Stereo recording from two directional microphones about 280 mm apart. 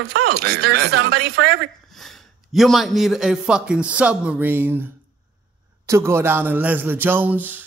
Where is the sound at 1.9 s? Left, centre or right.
Centre.